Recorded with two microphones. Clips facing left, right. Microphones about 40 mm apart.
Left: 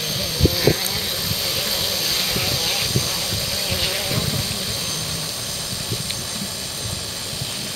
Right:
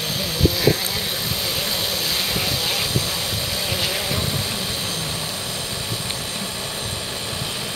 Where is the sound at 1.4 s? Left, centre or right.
Centre.